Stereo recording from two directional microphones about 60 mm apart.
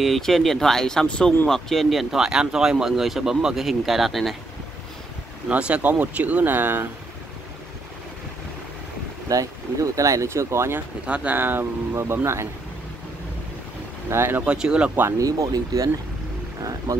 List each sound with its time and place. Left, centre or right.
0.0 s speech: centre
1.5 s speech: centre
5.5 s speech: right
9.3 s speech: right
11.1 s speech: centre
11.3 s speech: right
14.1 s speech: right
14.4 s speech: centre
15.1 s speech: right